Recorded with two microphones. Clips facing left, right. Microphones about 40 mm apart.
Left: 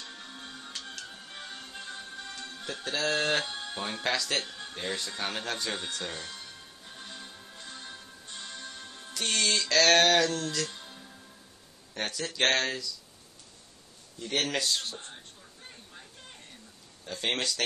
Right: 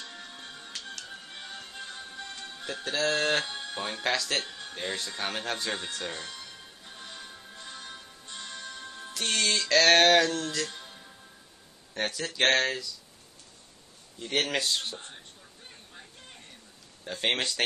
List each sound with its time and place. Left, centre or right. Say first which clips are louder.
0.1 s music: even; centre
11.9 s speech: right 2 dB; centre
14.2 s speech: right 1 dB; centre
17.0 s speech: right 2 dB; right